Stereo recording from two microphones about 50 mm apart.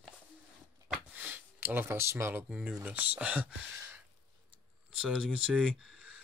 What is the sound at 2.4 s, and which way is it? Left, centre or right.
Speech, right.